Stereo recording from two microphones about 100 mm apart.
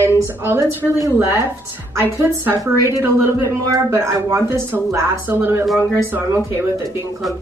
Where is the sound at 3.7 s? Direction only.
30° right (ahead or behind).